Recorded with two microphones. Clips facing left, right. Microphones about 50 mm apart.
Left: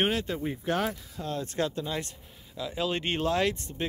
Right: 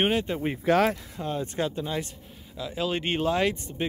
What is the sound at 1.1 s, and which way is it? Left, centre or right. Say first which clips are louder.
Speech: right 2 dB; right.